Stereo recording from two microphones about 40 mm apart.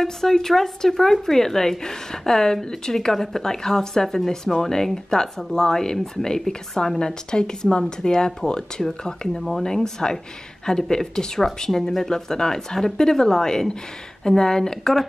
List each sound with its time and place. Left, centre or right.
0.0 s speech: centre
9.4 s speech: centre
9.7 s speech: centre